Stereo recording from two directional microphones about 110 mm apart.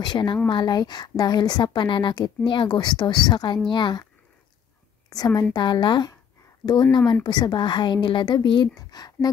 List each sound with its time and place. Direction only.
0.0 s a woman's voice: 45° left (ahead or behind)
5.1 s a woman's voice: 35° left (ahead or behind)
8.7 s speech: 35° left (ahead or behind)